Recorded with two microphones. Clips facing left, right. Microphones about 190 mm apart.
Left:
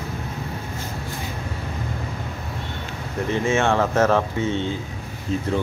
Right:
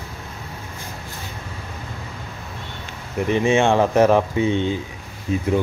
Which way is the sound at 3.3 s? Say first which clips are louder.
Right 4 dB; 20° right (ahead or behind).